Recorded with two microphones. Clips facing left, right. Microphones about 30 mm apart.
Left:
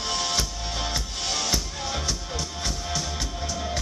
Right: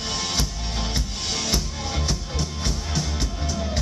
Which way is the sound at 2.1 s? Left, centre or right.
Right.